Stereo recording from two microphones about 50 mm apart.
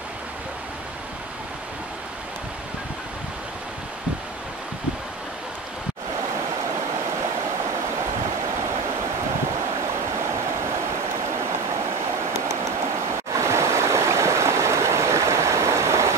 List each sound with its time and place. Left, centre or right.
13.3 s stream: right